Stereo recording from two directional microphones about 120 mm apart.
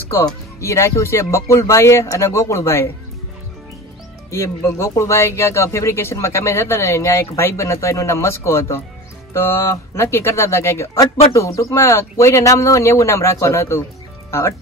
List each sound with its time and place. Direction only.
0.1 s speech: 25° left (ahead or behind)
4.3 s speech: 20° left (ahead or behind)